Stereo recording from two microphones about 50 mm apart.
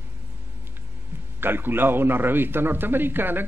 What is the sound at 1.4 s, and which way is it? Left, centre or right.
A man's voice, right.